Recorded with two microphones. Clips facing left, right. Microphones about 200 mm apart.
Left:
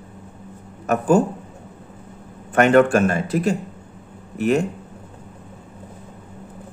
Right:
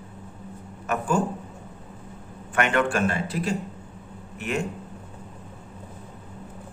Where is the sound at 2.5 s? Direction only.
40° left (ahead or behind).